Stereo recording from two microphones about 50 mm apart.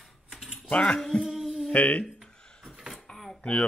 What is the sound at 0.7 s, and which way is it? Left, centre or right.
Speech, left.